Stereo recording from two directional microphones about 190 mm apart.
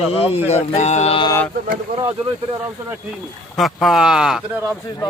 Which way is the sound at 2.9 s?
Centre (ahead or behind).